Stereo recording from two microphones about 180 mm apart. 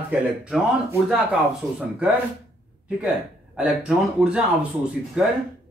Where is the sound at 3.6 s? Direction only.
10° right (ahead or behind).